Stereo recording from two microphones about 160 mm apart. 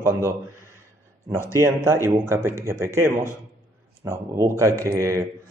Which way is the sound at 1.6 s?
15° right (ahead or behind).